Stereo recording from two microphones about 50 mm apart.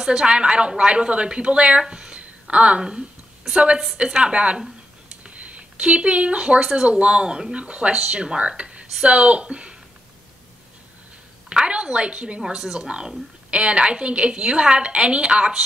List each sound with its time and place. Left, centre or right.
0.0 s a woman's voice: centre
11.4 s a woman's voice: right
12.4 s a woman's voice: centre